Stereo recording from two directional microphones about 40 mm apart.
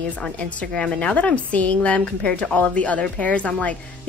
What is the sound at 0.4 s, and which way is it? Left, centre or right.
A woman's voice, left.